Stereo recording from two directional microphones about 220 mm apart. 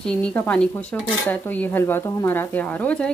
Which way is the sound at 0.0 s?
5° left (ahead or behind).